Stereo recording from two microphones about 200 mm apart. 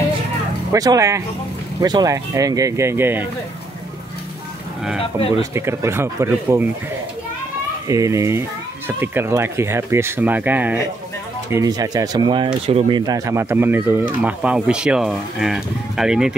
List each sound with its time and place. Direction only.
0.7 s speech: 15° right (ahead or behind)
5.4 s speech: 15° right (ahead or behind)
7.9 s speech: 15° right (ahead or behind)